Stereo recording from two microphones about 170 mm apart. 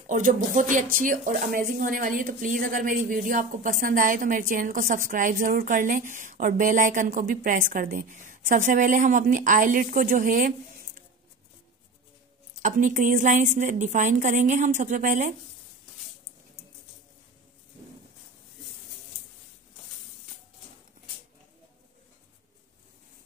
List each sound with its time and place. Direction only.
0.0 s speech: 50° right (ahead or behind)
12.6 s speech: 45° right (ahead or behind)